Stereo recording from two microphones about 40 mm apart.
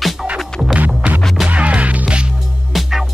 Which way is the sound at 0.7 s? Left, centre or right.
Right.